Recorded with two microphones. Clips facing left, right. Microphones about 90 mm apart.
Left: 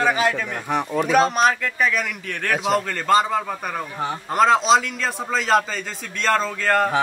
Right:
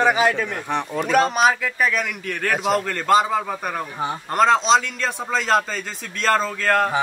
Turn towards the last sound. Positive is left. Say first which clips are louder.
# even
turn(degrees=0)  # may be behind; listen again after turning